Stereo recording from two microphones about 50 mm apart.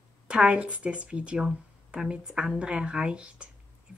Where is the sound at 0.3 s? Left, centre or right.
Right.